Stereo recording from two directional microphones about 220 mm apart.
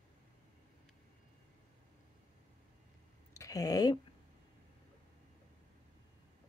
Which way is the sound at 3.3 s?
15° left (ahead or behind).